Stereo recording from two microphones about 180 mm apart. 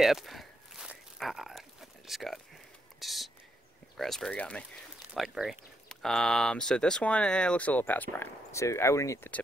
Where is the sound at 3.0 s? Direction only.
Centre (ahead or behind).